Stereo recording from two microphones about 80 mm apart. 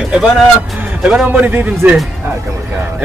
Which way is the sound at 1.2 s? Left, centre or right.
Centre.